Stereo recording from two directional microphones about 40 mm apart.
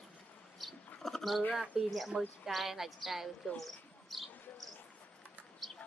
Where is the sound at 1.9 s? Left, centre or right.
Centre.